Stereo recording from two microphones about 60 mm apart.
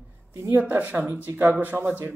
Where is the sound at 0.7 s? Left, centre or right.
Right.